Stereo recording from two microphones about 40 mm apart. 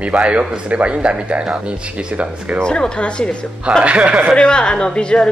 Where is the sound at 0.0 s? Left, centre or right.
Right.